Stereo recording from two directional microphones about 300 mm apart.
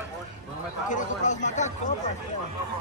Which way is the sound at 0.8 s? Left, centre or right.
Left.